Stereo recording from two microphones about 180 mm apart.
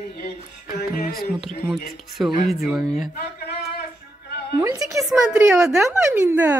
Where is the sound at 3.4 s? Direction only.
65° left (ahead or behind).